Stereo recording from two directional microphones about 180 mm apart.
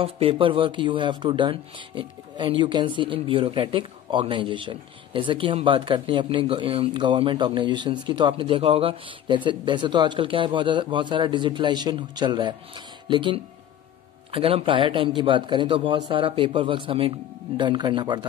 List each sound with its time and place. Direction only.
0.0 s speech: 30° right (ahead or behind)